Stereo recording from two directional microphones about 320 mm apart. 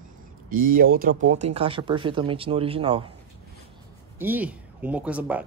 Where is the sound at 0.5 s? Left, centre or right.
Right.